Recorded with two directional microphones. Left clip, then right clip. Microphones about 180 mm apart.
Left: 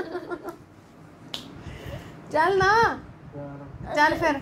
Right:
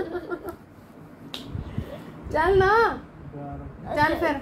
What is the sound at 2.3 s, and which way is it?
Speech, 40° left (ahead or behind).